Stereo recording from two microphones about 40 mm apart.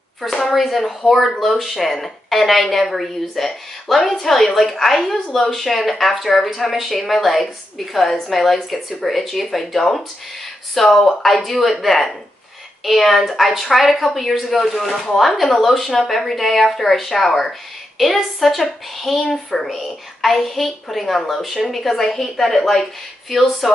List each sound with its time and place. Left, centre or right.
0.4 s a woman's voice: centre
19.2 s speech: centre
19.6 s a woman's voice: centre